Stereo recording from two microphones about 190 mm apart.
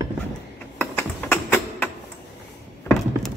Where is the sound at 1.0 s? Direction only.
10° left (ahead or behind).